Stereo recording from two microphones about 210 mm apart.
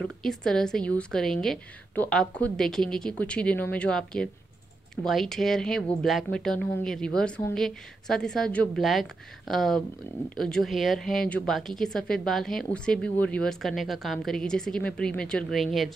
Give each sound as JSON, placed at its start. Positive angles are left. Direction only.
{"t": 0.0, "sound": "speech", "side_deg": 0}